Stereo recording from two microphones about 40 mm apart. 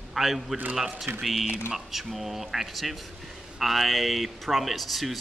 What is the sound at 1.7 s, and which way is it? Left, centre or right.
A man's voice, centre.